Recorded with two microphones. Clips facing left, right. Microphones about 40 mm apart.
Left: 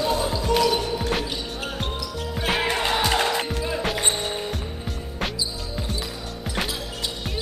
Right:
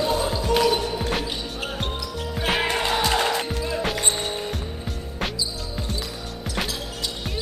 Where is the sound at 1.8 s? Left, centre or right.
Centre.